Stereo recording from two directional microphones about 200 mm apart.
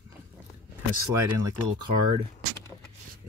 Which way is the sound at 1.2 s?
15° right (ahead or behind).